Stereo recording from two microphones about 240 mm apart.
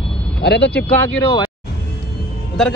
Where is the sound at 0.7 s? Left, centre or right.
Centre.